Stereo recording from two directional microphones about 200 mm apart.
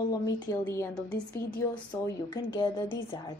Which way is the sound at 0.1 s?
15° left (ahead or behind).